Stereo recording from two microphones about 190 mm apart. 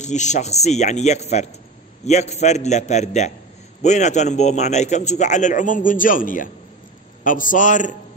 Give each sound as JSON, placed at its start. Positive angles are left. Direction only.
{"t": 0.0, "sound": "a man's voice", "side_deg": 40}